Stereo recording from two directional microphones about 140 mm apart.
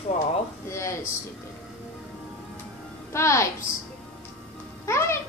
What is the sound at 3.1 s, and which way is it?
Female singing, 20° left (ahead or behind).